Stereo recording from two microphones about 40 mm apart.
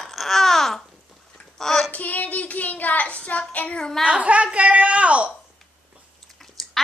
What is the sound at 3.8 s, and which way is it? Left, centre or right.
Speech, centre.